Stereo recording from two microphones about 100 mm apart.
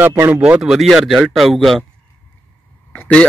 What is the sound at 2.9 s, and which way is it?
Speech, 15° left (ahead or behind).